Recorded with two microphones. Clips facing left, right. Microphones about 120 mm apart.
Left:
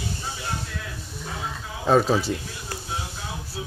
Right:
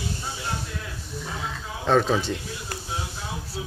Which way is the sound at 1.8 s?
5° left (ahead or behind).